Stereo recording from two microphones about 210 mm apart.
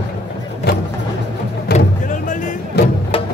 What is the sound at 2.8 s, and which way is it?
Music, 50° left (ahead or behind).